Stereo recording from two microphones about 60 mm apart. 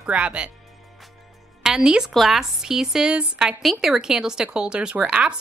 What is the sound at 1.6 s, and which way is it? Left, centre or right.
A woman's voice, centre.